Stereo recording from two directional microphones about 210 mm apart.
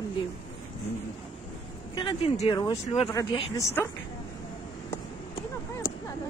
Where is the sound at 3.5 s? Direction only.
10° left (ahead or behind).